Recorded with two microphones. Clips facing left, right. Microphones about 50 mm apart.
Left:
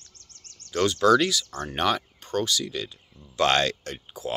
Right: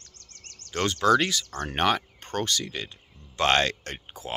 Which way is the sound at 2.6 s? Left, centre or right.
Right.